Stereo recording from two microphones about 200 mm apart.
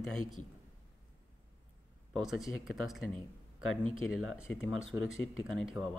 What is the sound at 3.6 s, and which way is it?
Speech, 90° left.